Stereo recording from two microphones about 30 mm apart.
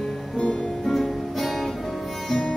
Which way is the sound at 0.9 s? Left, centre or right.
Centre.